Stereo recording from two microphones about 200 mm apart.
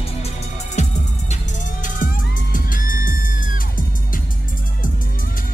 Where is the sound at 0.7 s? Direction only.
35° left (ahead or behind).